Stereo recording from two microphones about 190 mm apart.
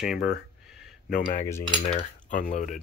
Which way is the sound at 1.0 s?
45° left (ahead or behind).